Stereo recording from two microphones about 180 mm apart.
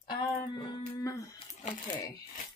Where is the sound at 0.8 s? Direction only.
20° left (ahead or behind).